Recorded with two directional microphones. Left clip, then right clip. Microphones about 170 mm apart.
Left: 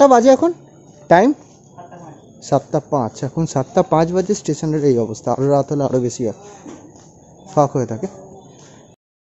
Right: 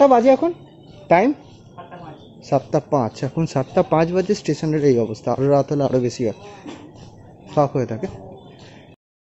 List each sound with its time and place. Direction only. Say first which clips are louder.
0.0 s a woman's voice: left 3 dB; 30° left (ahead or behind)
2.7 s speech: even; 5° left (ahead or behind)
7.5 s speech: left 3 dB; 15° left (ahead or behind)